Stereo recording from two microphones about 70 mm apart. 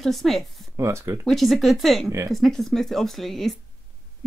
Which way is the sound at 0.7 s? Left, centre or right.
Right.